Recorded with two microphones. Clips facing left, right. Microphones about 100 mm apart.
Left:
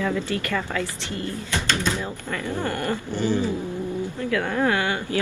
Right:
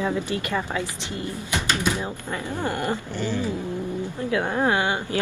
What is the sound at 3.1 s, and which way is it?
Speech, 15° left (ahead or behind).